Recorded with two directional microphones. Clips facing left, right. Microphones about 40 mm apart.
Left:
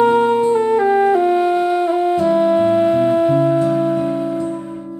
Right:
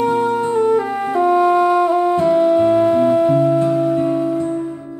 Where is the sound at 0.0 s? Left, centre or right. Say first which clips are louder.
Left 4 dB; left.